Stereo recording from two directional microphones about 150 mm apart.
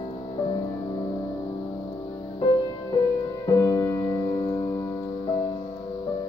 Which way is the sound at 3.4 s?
25° left (ahead or behind).